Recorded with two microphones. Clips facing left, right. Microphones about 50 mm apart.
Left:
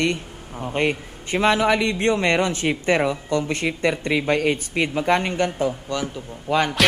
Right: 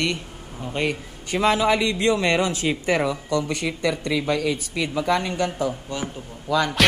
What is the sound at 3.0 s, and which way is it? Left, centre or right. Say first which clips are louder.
Speech: left 1 dB; left.